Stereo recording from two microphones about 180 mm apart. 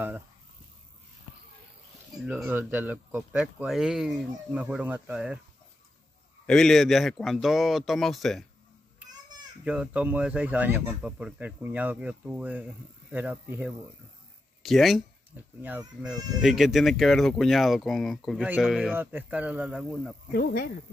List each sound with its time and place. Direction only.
2.2 s speech: 10° right (ahead or behind)
6.4 s speech: 5° left (ahead or behind)
9.7 s speech: 5° right (ahead or behind)
16.3 s speech: centre (ahead or behind)
20.3 s speech: 60° left (ahead or behind)